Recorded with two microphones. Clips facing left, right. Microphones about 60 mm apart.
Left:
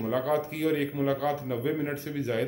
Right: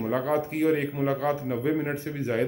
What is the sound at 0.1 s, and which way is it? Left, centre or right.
Speech, right.